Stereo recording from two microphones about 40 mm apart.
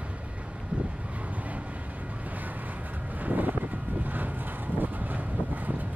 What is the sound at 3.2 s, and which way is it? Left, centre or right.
Vehicle, right.